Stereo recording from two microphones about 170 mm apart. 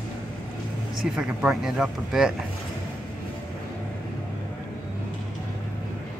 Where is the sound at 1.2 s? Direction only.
5° right (ahead or behind).